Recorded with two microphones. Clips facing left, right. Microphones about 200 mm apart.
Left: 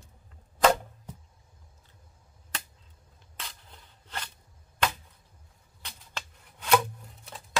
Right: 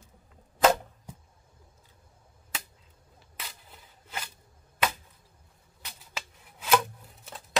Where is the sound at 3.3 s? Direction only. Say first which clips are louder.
Even; 5° right (ahead or behind).